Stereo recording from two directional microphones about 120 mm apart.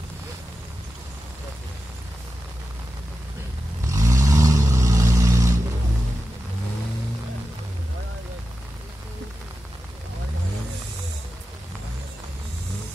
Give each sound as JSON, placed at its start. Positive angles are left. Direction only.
{"t": 3.9, "sound": "vehicle", "side_deg": -25}